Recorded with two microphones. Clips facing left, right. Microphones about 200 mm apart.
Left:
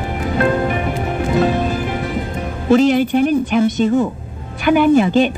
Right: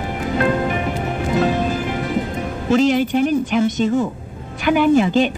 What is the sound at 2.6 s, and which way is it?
A woman's voice, 55° left (ahead or behind).